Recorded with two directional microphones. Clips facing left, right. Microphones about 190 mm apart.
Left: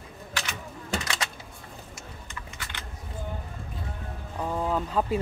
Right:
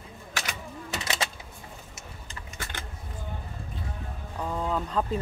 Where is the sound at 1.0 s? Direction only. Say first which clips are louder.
Right 2 dB; 25° right (ahead or behind).